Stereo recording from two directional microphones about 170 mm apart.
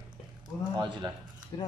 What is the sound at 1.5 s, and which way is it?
Speech, 25° left (ahead or behind).